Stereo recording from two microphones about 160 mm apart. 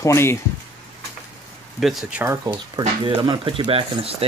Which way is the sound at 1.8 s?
Centre (ahead or behind).